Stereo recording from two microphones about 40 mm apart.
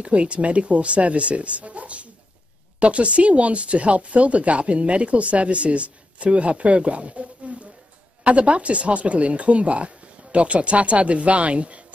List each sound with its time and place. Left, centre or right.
0.0 s speech: right